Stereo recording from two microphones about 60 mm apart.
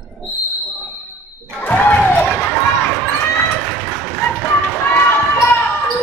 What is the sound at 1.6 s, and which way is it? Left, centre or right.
Basketball bounce, left.